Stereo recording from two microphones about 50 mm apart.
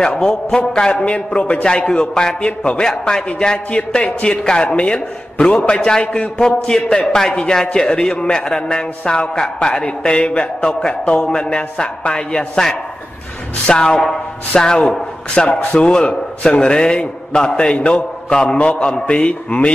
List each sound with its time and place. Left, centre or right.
0.2 s a man's voice: centre